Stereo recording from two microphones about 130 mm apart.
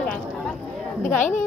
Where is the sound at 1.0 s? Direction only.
75° left (ahead or behind).